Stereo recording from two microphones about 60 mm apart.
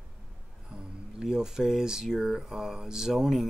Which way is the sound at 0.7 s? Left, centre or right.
Centre.